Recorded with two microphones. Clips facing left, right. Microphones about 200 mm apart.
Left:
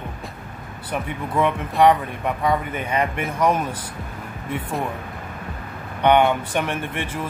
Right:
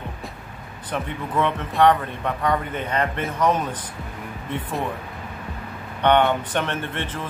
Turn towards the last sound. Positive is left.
turn(degrees=10)  # may be behind; listen again after turning